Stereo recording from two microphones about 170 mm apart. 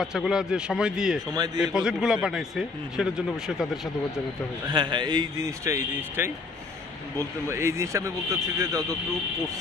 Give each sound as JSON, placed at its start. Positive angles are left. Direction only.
{"t": 0.0, "sound": "a man's voice", "side_deg": -5}
{"t": 1.3, "sound": "speech", "side_deg": -25}
{"t": 1.6, "sound": "a man's voice", "side_deg": -5}
{"t": 4.6, "sound": "a man's voice", "side_deg": -25}